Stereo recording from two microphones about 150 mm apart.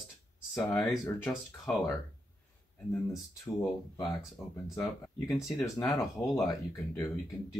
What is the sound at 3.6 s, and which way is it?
Speech, 30° left (ahead or behind).